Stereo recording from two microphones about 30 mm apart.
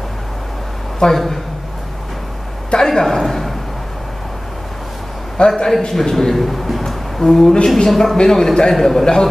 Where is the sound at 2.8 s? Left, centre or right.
Centre.